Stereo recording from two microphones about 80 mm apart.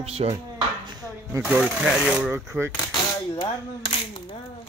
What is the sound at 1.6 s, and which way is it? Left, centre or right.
Speech, centre.